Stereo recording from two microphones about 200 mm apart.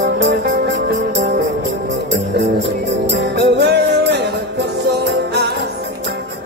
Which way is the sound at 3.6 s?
60° right (ahead or behind).